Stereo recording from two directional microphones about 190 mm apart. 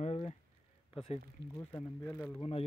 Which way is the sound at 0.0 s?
35° left (ahead or behind).